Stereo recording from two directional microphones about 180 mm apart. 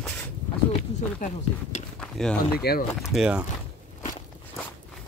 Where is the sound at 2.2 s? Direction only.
Centre (ahead or behind).